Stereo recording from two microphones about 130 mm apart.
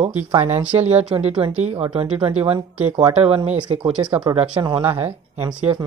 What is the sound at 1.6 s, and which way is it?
Speech, 55° right (ahead or behind).